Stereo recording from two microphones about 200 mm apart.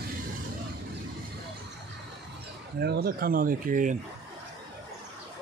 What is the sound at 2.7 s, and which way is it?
Speech, 50° right (ahead or behind).